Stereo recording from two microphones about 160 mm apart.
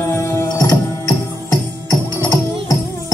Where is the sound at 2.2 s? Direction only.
15° left (ahead or behind).